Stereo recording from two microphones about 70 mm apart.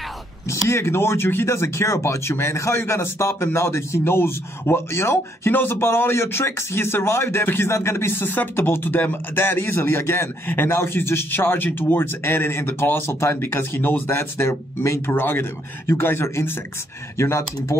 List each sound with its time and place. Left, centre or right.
0.5 s speech: left